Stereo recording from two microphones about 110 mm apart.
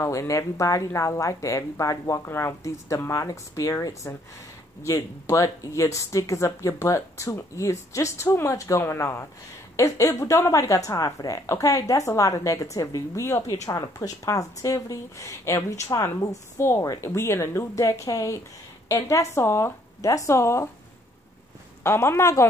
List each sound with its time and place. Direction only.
0.0 s speech: 30° left (ahead or behind)
21.8 s speech: 25° left (ahead or behind)